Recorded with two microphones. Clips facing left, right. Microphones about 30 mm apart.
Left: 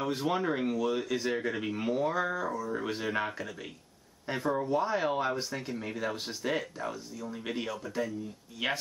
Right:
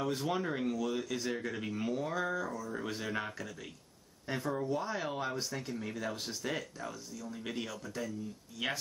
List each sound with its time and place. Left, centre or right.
0.0 s speech: left